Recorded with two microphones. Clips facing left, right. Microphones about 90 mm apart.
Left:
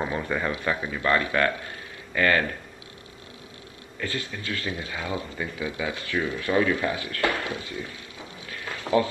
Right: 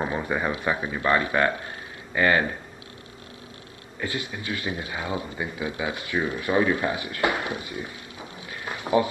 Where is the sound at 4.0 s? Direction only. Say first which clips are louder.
Right 1 dB; 20° right (ahead or behind).